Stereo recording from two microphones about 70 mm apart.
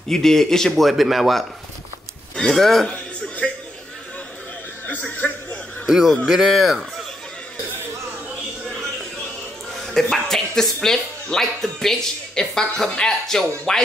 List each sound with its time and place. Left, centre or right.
0.1 s speech: centre
3.4 s a sound: centre
5.1 s speech: left
5.9 s a man's voice: centre
9.9 s speech: centre